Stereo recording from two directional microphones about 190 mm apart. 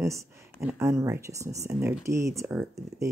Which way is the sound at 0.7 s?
15° right (ahead or behind).